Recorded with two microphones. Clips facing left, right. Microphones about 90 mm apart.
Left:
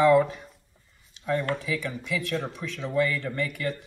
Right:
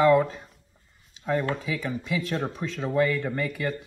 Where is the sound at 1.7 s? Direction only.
30° right (ahead or behind).